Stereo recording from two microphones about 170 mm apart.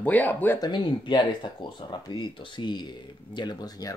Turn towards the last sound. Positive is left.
turn(degrees=20)  # may be behind; listen again after turning